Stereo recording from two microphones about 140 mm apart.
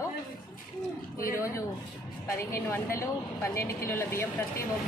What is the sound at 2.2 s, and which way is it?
A woman's voice, 20° left (ahead or behind).